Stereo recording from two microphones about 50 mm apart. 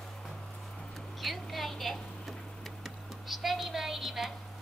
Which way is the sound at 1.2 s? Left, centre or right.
Centre.